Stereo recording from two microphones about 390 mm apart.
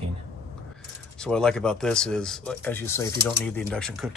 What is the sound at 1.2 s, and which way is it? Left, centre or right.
Speech, centre.